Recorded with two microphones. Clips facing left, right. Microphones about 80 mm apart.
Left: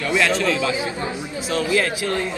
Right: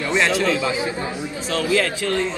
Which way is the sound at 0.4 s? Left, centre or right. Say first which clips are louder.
Right 1 dB; right.